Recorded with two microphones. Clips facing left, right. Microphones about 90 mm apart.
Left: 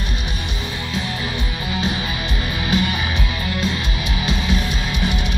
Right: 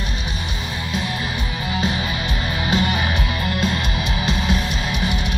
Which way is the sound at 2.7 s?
25° right (ahead or behind).